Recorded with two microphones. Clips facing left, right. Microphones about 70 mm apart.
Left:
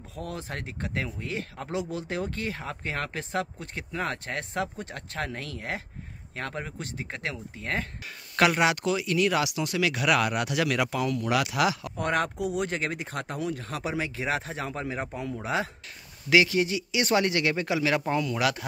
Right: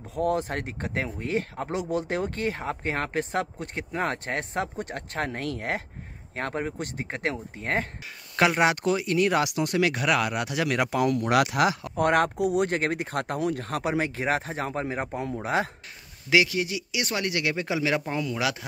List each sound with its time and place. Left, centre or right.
0.1 s speech: right
6.3 s speech: right
10.1 s speech: centre
10.8 s speech: right
12.0 s speech: right
15.4 s speech: right
16.3 s speech: centre
18.3 s speech: centre